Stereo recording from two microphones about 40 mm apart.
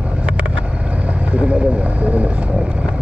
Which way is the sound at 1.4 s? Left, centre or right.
Right.